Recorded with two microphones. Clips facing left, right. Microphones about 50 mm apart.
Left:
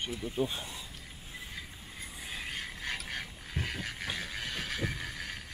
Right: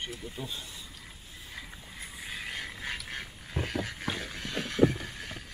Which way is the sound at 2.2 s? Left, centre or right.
Centre.